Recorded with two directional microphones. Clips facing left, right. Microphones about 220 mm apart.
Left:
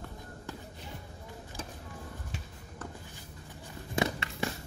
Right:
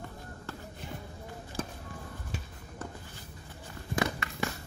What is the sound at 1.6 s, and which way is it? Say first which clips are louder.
Music: right 7 dB; 55° right (ahead or behind).